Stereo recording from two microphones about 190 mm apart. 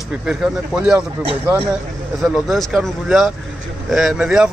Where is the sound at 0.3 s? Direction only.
5° right (ahead or behind).